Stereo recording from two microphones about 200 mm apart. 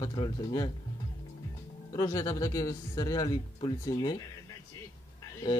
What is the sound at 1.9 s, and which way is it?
A man's voice, 15° left (ahead or behind).